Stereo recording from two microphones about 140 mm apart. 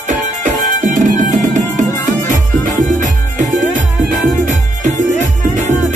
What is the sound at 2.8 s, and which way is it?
Music, 60° right (ahead or behind).